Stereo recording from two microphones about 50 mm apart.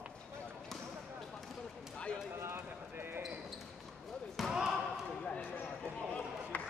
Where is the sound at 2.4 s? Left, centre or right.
Right.